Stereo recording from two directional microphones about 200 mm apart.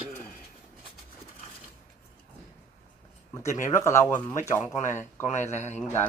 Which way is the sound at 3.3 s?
15° left (ahead or behind).